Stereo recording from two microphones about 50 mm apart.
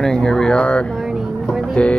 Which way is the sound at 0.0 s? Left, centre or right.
Centre.